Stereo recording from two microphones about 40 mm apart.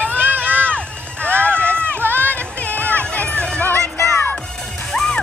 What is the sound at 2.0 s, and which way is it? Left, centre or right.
Run, right.